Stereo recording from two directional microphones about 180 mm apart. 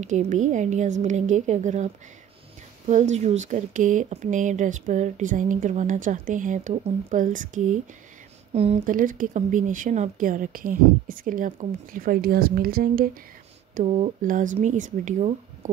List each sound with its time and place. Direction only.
0.0 s speech: 40° right (ahead or behind)
2.9 s speech: 40° right (ahead or behind)
8.5 s speech: 35° right (ahead or behind)
8.8 s speech: 50° right (ahead or behind)
13.7 s speech: 35° right (ahead or behind)